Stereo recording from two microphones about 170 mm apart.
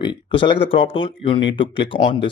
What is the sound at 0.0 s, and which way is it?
Speech, 30° left (ahead or behind).